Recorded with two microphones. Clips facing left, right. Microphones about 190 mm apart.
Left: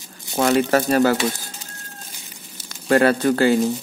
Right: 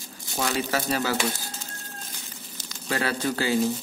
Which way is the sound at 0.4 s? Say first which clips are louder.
Left 10 dB; 55° left (ahead or behind).